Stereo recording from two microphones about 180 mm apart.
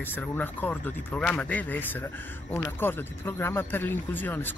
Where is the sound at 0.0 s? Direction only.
10° left (ahead or behind).